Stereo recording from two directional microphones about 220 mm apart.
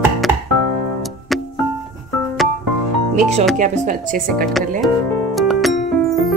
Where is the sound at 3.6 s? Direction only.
35° right (ahead or behind).